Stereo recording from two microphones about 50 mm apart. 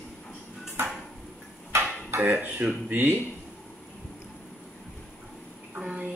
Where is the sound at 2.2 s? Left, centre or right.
Right.